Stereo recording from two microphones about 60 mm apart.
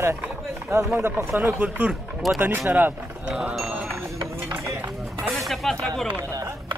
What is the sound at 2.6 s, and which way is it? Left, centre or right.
Speech, right.